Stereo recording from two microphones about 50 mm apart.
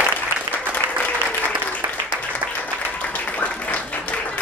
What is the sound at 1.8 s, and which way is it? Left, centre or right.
Applause, right.